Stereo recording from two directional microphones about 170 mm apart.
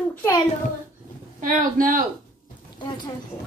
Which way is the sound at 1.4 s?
55° right (ahead or behind).